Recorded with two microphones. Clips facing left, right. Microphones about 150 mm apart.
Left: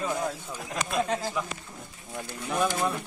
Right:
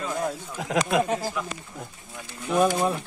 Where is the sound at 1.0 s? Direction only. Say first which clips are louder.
Right 2 dB; 10° right (ahead or behind).